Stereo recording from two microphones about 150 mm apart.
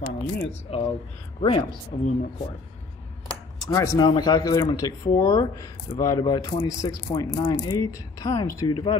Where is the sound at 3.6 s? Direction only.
25° left (ahead or behind).